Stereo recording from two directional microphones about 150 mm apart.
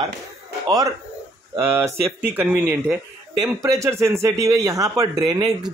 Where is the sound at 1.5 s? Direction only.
15° right (ahead or behind).